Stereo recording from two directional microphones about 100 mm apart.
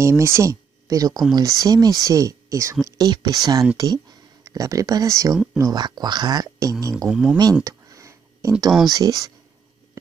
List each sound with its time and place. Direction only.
0.0 s speech: 30° right (ahead or behind)
3.0 s speech: 40° right (ahead or behind)
5.3 s speech: 5° right (ahead or behind)
5.6 s speech: 45° right (ahead or behind)
7.1 s speech: 10° right (ahead or behind)
7.6 s a sound: 35° right (ahead or behind)
8.9 s speech: 40° right (ahead or behind)